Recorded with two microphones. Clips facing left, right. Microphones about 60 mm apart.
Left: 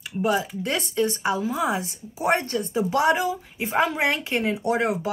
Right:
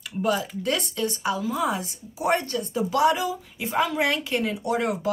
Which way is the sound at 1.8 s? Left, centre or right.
Left.